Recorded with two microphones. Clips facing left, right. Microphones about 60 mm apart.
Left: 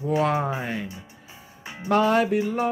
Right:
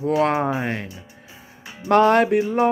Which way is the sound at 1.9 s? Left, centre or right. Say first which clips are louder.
Right 5 dB; right.